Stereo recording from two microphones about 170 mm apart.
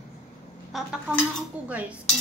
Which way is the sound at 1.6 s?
5° right (ahead or behind).